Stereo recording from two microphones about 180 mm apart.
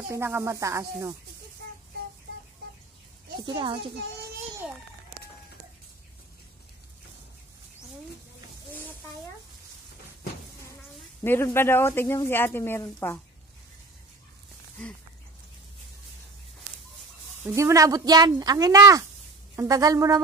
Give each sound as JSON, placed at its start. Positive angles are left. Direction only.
{"t": 0.1, "sound": "a sound", "side_deg": -15}
{"t": 3.3, "sound": "speech", "side_deg": -25}
{"t": 11.2, "sound": "speech", "side_deg": 10}
{"t": 17.4, "sound": "speech", "side_deg": -15}